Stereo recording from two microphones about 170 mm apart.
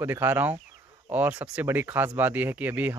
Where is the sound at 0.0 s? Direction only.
15° right (ahead or behind).